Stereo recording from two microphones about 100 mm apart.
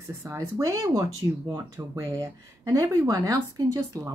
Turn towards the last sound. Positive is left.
turn(degrees=-30)  # may be behind; listen again after turning